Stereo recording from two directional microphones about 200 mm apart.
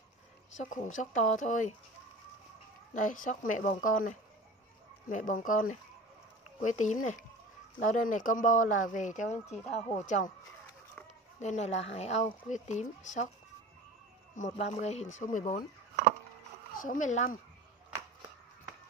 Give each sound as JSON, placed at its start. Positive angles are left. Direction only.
{"t": 0.9, "sound": "speech", "side_deg": 40}
{"t": 2.9, "sound": "speech", "side_deg": 40}
{"t": 5.1, "sound": "speech", "side_deg": 40}
{"t": 11.4, "sound": "speech", "side_deg": 35}
{"t": 14.3, "sound": "speech", "side_deg": 35}
{"t": 16.7, "sound": "speech", "side_deg": 45}